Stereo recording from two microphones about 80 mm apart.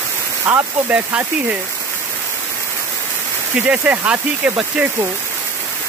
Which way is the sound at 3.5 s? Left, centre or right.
Centre.